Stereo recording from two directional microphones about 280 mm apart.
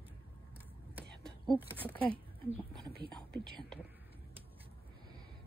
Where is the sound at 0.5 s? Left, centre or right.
Centre.